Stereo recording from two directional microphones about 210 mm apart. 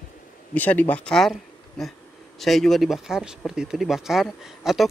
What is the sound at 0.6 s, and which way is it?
Speech, 10° left (ahead or behind).